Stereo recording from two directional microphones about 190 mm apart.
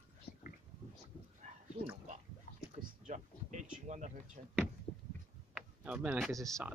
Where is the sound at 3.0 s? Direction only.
40° right (ahead or behind).